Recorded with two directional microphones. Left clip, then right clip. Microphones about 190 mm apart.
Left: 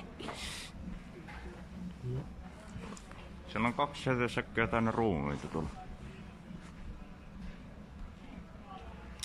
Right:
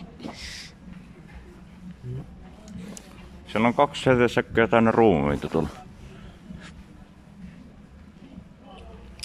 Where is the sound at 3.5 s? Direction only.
45° right (ahead or behind).